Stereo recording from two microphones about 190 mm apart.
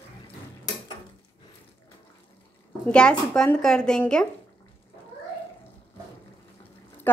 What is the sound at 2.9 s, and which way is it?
A woman's voice, 5° left (ahead or behind).